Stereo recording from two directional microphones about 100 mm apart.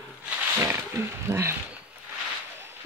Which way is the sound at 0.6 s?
25° right (ahead or behind).